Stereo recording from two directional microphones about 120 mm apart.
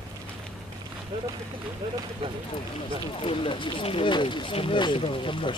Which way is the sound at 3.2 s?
50° left (ahead or behind).